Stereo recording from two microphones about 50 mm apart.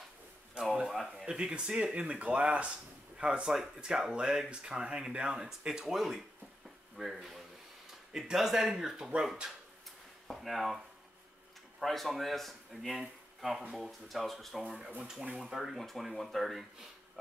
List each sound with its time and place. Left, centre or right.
0.6 s speech: centre
0.9 s a man's voice: centre
1.2 s speech: centre
3.4 s a man's voice: centre
11.8 s a man's voice: centre